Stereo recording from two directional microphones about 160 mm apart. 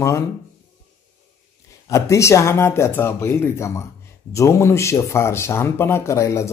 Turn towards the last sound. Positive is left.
turn(degrees=20)  # may be behind; listen again after turning